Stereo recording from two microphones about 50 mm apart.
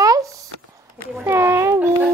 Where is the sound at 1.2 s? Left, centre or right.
Right.